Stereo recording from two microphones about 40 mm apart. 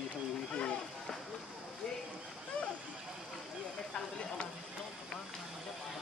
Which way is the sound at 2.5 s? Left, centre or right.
Left.